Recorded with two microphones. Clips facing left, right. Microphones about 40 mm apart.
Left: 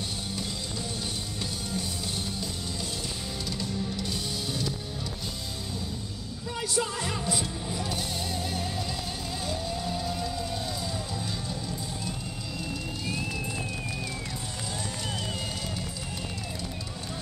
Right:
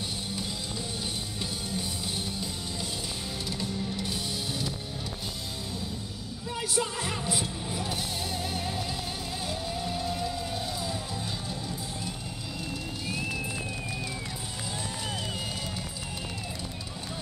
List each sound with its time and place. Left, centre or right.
1.4 s music: centre
3.4 s music: centre
6.8 s music: centre